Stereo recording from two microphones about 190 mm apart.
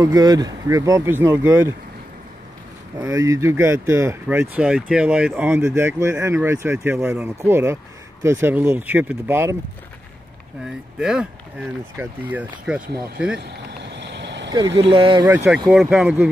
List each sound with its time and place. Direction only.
0.0 s speech: 20° right (ahead or behind)
3.0 s speech: 15° right (ahead or behind)
11.0 s speech: 5° right (ahead or behind)
13.4 s vehicle: 65° right (ahead or behind)
14.8 s speech: 25° right (ahead or behind)
15.7 s speech: centre (ahead or behind)